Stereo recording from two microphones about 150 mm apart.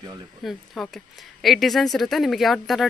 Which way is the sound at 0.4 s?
Centre (ahead or behind).